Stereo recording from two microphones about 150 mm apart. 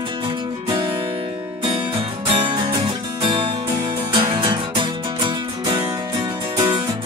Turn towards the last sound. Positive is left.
turn(degrees=-25)  # may be behind; listen again after turning